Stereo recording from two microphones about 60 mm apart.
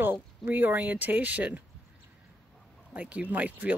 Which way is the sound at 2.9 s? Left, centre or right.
Right.